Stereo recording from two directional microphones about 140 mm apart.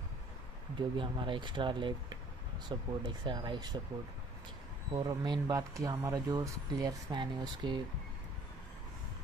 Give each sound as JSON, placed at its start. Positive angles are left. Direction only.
{"t": 0.7, "sound": "speech", "side_deg": -35}
{"t": 4.9, "sound": "speech", "side_deg": -30}